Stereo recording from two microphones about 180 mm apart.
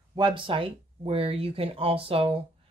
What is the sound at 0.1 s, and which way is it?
Speech, 25° right (ahead or behind).